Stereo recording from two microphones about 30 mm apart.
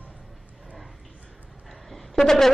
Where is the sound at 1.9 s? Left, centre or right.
Centre.